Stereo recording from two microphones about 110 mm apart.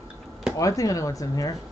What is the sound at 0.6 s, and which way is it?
Speech, 30° left (ahead or behind).